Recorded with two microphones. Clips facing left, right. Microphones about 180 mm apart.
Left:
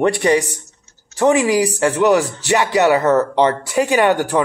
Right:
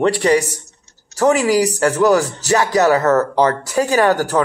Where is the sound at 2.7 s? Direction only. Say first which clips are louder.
Even; 15° left (ahead or behind).